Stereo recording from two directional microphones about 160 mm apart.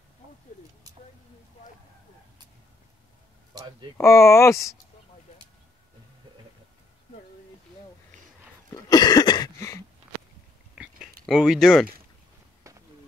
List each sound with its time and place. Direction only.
3.5 s speech: 25° right (ahead or behind)
4.0 s speech: 15° left (ahead or behind)
8.7 s cough: 25° left (ahead or behind)
10.8 s chewing: 5° right (ahead or behind)
12.7 s a sound: 20° right (ahead or behind)